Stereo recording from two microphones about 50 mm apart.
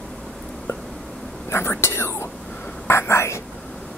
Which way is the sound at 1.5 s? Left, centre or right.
Left.